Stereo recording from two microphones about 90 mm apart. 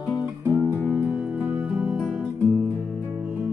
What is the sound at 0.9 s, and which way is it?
Music, 10° right (ahead or behind).